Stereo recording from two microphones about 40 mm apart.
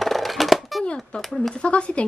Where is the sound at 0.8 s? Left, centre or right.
Left.